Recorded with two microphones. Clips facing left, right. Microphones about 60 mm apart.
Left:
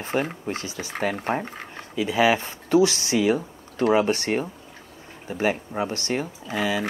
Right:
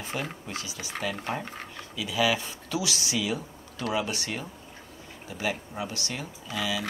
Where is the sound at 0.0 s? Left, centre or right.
Left.